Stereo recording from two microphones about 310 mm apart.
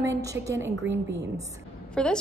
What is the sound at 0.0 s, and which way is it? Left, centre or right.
Speech, centre.